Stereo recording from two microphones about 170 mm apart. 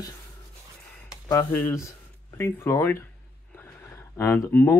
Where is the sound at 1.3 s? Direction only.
15° left (ahead or behind).